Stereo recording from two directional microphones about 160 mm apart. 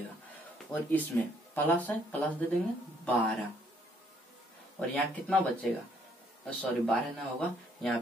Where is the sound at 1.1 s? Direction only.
10° left (ahead or behind).